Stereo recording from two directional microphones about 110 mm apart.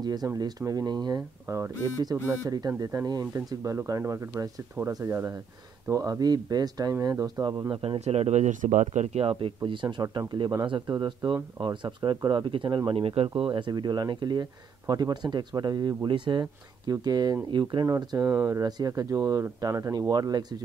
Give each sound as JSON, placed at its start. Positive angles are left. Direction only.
{"t": 0.0, "sound": "speech", "side_deg": -40}
{"t": 8.0, "sound": "speech", "side_deg": -80}
{"t": 9.6, "sound": "speech", "side_deg": -45}
{"t": 12.9, "sound": "speech", "side_deg": -60}
{"t": 13.4, "sound": "speech", "side_deg": -45}
{"t": 17.8, "sound": "speech", "side_deg": -30}
{"t": 18.6, "sound": "speech", "side_deg": -35}